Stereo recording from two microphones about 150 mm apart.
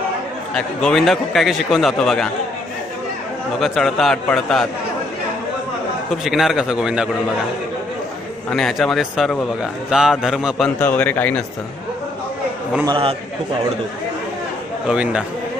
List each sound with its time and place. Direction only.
0.6 s a man's voice: 5° left (ahead or behind)
3.5 s a man's voice: centre (ahead or behind)
6.2 s a man's voice: centre (ahead or behind)
8.5 s a man's voice: centre (ahead or behind)
10.8 s a man's voice: 10° left (ahead or behind)
12.8 s a man's voice: 35° right (ahead or behind)
14.9 s a man's voice: 5° right (ahead or behind)